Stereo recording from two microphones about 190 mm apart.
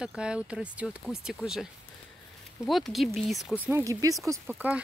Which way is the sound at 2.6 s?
Centre (ahead or behind).